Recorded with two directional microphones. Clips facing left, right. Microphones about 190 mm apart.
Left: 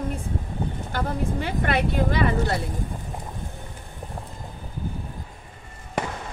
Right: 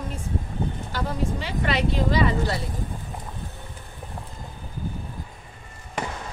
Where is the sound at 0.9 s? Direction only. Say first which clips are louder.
Left 2 dB; 55° left (ahead or behind).